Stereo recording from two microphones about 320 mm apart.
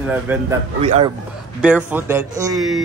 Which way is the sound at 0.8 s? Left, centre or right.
Centre.